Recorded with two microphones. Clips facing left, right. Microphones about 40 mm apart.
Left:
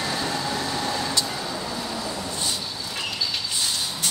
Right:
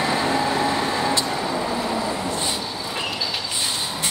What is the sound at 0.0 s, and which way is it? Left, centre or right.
Vehicle, right.